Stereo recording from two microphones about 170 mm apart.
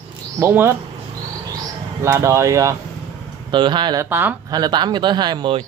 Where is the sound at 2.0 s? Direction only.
15° right (ahead or behind).